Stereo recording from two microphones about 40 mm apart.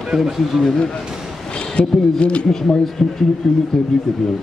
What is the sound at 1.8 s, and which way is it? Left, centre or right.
Speech, left.